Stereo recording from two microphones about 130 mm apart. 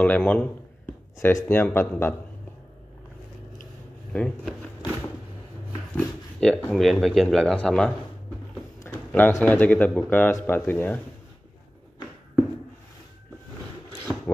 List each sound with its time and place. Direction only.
0.0 s speech: 10° left (ahead or behind)
4.1 s speech: 10° left (ahead or behind)
5.9 s speech: 10° left (ahead or behind)
8.8 s a sound: 15° left (ahead or behind)
9.4 s speech: 10° left (ahead or behind)